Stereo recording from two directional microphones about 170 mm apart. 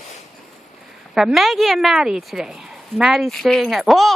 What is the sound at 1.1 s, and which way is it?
A woman's voice, centre (ahead or behind).